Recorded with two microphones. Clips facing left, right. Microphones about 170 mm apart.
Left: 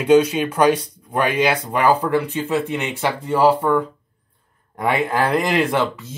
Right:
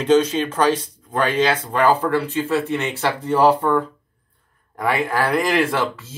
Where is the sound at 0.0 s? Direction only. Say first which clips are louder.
Left 2 dB; 10° left (ahead or behind).